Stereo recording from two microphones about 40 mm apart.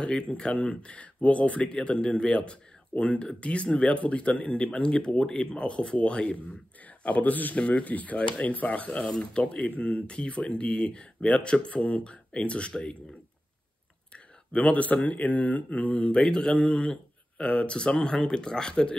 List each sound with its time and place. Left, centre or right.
0.0 s speech: left
14.1 s speech: left